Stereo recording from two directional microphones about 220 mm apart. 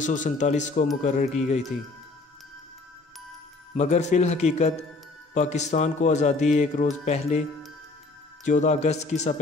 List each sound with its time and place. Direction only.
0.0 s speech: 35° left (ahead or behind)
3.7 s speech: 30° left (ahead or behind)
8.5 s speech: 35° left (ahead or behind)